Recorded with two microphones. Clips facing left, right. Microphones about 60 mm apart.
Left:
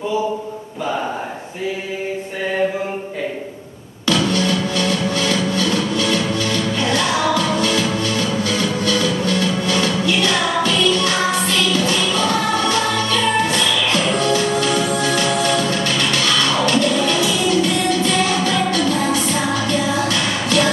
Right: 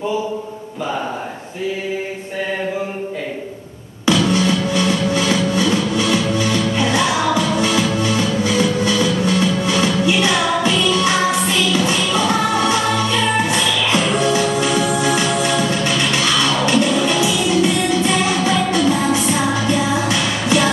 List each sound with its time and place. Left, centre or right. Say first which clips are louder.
4.0 s music: right 2 dB; centre